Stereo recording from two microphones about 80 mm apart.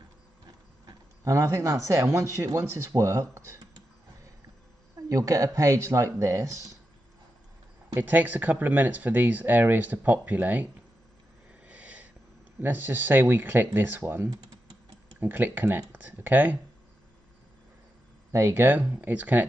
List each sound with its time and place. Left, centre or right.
1.2 s speech: right
4.9 s speech: right
7.9 s speech: right
11.6 s wheeze: centre
12.5 s speech: right
18.3 s speech: right; by 19.4 s centre